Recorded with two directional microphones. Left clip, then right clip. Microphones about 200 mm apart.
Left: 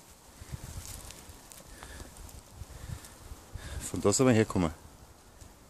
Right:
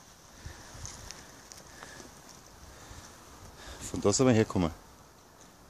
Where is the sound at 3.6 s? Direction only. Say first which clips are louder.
Even; centre (ahead or behind).